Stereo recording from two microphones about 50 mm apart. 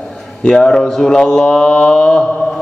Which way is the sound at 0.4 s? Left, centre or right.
Centre.